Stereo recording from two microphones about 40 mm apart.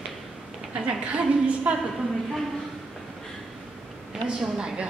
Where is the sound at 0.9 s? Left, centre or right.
Right.